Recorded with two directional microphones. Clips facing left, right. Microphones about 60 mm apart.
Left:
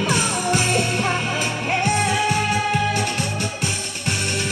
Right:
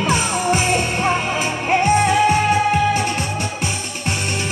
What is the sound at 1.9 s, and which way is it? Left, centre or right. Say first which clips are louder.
Music: right 5 dB; centre.